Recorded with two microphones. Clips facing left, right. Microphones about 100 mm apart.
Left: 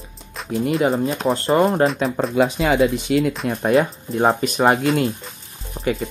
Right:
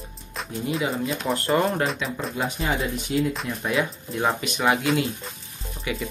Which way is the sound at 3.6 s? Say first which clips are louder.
Left 9 dB; 40° left (ahead or behind).